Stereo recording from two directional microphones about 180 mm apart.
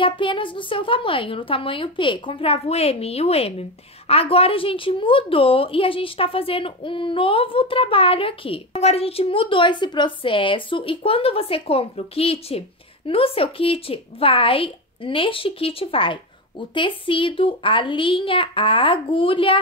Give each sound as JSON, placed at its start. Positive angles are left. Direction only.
{"t": 0.0, "sound": "a woman's voice", "side_deg": 30}